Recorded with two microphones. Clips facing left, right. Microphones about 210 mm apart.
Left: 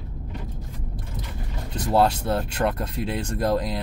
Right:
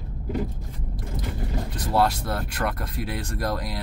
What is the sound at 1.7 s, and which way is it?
Speech, 25° left (ahead or behind).